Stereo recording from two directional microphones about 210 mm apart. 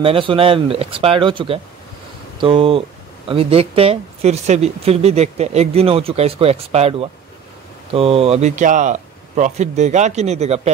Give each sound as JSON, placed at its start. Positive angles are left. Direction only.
{"t": 0.0, "sound": "speech", "side_deg": -25}